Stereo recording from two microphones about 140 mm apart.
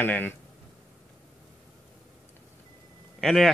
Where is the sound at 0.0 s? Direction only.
15° left (ahead or behind).